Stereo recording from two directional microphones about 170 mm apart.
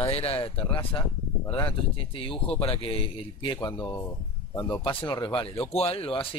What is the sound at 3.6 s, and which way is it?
Speech, 20° left (ahead or behind).